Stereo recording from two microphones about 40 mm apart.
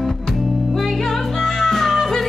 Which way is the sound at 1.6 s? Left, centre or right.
Centre.